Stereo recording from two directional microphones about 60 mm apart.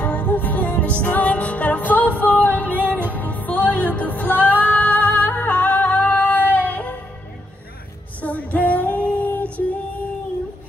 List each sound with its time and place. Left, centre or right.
0.0 s music: left
2.8 s music: right
3.2 s music: left
8.2 s female singing: left